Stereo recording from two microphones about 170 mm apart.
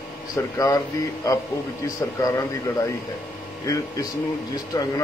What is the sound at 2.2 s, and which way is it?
Speech, 20° left (ahead or behind).